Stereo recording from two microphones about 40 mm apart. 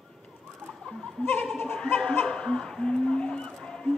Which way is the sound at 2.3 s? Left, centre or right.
Centre.